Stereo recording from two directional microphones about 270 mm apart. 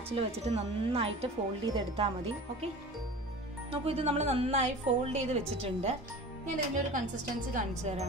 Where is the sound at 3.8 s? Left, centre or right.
Right.